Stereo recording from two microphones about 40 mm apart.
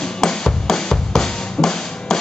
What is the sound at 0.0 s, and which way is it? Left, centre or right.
Music, centre.